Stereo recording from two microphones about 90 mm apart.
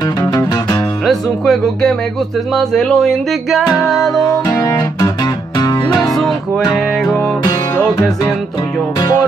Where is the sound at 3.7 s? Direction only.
35° left (ahead or behind).